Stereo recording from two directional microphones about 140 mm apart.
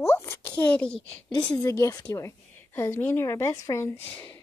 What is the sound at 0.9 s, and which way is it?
Speech, 45° left (ahead or behind).